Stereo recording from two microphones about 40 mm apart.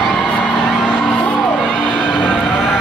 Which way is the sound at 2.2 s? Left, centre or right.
Centre.